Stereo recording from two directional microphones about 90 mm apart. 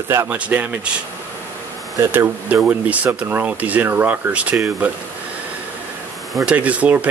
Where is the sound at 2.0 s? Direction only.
25° right (ahead or behind).